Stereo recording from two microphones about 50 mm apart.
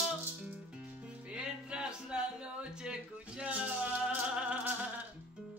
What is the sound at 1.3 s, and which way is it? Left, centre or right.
Music, centre.